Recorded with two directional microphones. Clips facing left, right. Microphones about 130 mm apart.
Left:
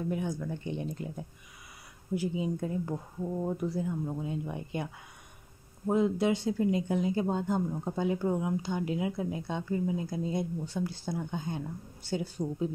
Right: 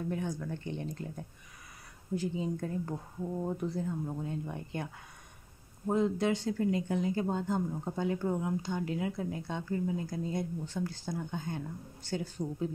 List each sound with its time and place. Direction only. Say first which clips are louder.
0.1 s speech: left 2 dB; 10° left (ahead or behind)
5.9 s speech: left 2 dB; 10° left (ahead or behind)